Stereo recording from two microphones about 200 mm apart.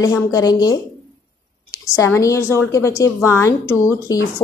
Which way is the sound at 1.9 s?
15° left (ahead or behind).